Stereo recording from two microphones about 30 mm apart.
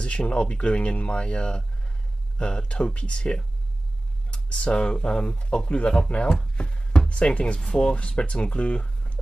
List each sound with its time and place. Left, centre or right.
0.0 s speech: left
6.5 s chopping: left
7.1 s speech: left
7.6 s speech: left